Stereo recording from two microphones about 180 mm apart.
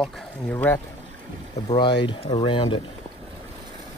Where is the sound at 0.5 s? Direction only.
10° left (ahead or behind).